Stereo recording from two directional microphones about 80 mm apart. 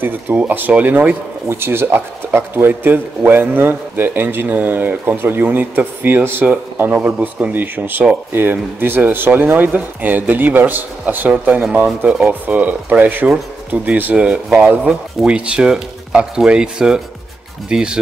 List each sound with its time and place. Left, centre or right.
0.0 s speech: right